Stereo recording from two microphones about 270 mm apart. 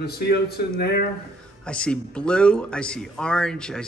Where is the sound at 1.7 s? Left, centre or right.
Centre.